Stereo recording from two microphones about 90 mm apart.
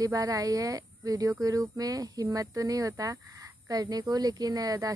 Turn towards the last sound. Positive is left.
turn(degrees=-45)  # may be behind; listen again after turning